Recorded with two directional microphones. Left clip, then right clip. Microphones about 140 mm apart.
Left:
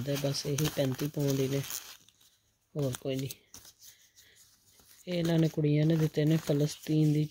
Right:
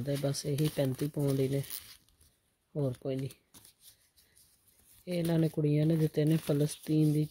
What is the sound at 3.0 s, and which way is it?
Speech, 50° right (ahead or behind).